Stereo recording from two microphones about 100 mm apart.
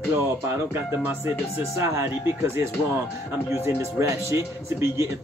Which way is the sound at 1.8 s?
25° right (ahead or behind).